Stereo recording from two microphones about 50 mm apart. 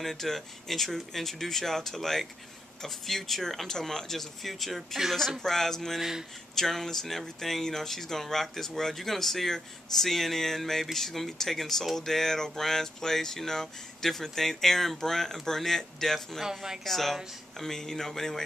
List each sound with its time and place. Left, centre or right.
0.0 s speech: centre
5.9 s speech: centre
6.5 s speech: centre
16.4 s speech: centre
16.8 s speech: centre